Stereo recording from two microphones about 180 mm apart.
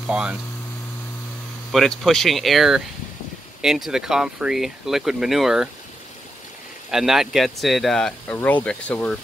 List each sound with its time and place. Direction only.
0.0 s speech: 5° right (ahead or behind)
1.7 s speech: centre (ahead or behind)
6.9 s speech: centre (ahead or behind)